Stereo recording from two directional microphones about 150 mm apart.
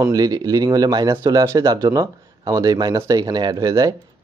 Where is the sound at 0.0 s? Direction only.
25° right (ahead or behind).